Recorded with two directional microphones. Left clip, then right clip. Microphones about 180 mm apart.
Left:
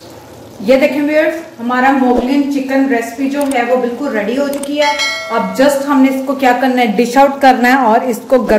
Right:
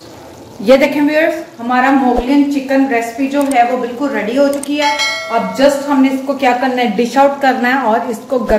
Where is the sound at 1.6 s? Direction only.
25° right (ahead or behind).